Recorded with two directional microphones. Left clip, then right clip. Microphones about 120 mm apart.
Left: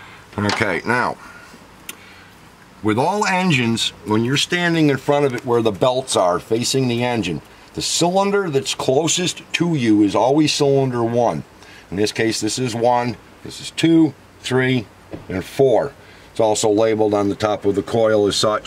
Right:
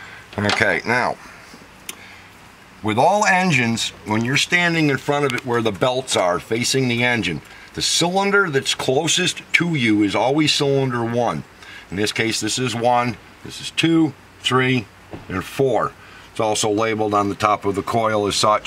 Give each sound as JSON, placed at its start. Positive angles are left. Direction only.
{"t": 0.4, "sound": "speech", "side_deg": 0}
{"t": 2.8, "sound": "speech", "side_deg": 0}